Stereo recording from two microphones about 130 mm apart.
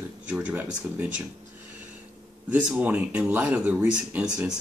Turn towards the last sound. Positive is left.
turn(degrees=-10)  # may be behind; listen again after turning